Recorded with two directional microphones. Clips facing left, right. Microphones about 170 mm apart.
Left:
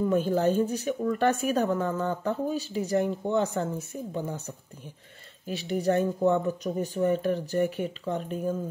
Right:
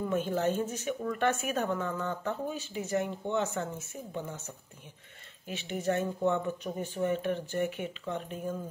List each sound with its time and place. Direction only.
0.1 s speech: 35° left (ahead or behind)
5.5 s speech: 35° left (ahead or behind)